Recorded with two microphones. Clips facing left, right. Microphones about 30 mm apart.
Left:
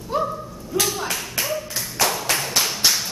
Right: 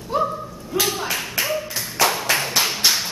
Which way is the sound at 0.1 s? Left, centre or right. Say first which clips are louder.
Right 2 dB; centre.